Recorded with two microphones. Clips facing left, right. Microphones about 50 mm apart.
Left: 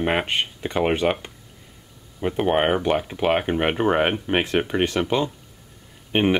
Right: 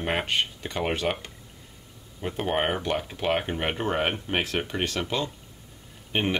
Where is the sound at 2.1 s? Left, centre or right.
Centre.